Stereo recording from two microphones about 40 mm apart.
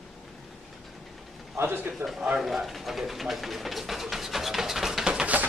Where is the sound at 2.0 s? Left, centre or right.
Right.